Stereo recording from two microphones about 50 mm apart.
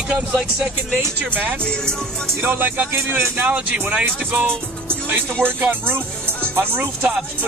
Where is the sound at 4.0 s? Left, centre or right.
Right.